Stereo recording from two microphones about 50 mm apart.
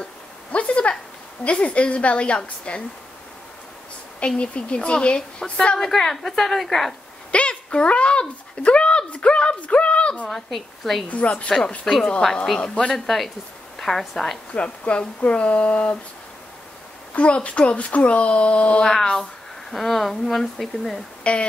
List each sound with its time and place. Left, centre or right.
0.0 s a sound: left
1.4 s speech: left
4.4 s a woman's voice: left; by 7.0 s centre
7.2 s a sound: left
10.2 s speech: centre
12.5 s speech: centre
12.9 s speech: centre
14.5 s speech: left
17.1 s speech: left
18.9 s a woman's voice: centre
21.2 s speech: left